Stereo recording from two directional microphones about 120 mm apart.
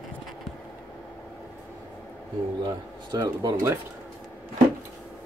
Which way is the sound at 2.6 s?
35° right (ahead or behind).